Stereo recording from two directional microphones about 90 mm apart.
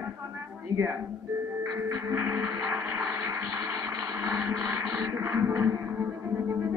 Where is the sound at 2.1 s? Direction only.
25° right (ahead or behind).